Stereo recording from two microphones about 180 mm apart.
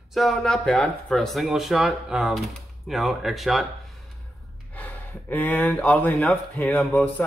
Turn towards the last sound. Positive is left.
turn(degrees=5)  # may be behind; listen again after turning